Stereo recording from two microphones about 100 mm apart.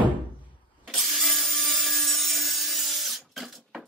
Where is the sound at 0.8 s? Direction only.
Centre (ahead or behind).